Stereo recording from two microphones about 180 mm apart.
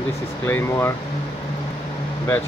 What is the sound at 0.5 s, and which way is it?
Speech, 15° left (ahead or behind).